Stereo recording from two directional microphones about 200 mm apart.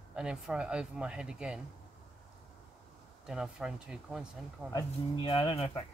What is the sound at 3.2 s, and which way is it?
Speech, 5° right (ahead or behind).